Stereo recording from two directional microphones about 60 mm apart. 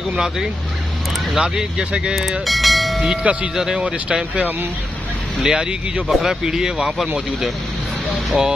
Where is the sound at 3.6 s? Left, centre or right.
Centre.